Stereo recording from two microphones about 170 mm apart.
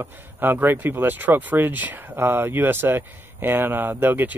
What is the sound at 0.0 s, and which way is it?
Speech, 10° right (ahead or behind).